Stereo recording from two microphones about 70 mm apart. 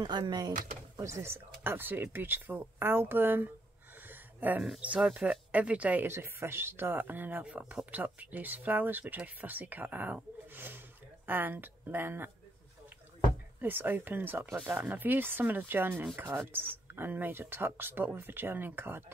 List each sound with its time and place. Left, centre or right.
0.0 s speech: right
0.9 s speech: right
4.1 s a sound: right
4.7 s speech: centre
6.0 s speech: right
13.6 s speech: right